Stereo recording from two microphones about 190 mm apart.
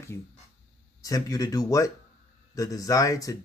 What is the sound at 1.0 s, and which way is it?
Speech, 20° left (ahead or behind).